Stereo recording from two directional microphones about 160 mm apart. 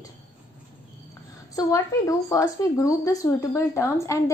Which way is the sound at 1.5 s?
20° left (ahead or behind).